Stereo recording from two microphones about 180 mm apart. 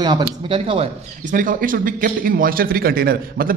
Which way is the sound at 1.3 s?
50° right (ahead or behind).